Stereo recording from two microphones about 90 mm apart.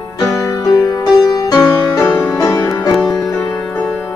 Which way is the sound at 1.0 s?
45° left (ahead or behind).